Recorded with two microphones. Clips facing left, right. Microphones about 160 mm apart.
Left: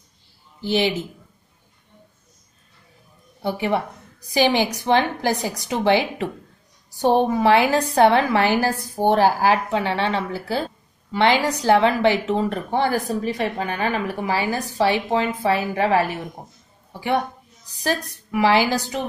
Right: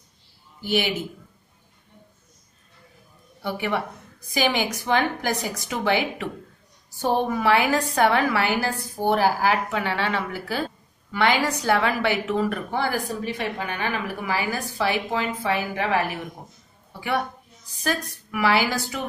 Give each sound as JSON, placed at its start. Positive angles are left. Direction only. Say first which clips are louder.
{"t": 0.6, "sound": "a woman's voice", "louder": "left 3 dB", "side_deg": 30}
{"t": 3.4, "sound": "a woman's voice", "louder": "left 4 dB", "side_deg": 30}
{"t": 17.8, "sound": "a woman's voice", "louder": "left 3 dB", "side_deg": 30}